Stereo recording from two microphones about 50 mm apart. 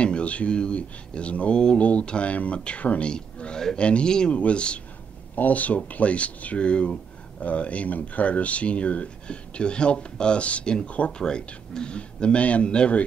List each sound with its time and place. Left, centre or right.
0.0 s speech: left